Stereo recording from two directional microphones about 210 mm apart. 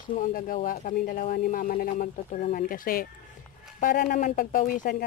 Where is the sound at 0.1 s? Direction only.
40° left (ahead or behind).